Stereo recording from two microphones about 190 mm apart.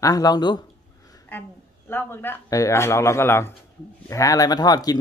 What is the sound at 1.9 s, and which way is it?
A woman's voice, 10° left (ahead or behind).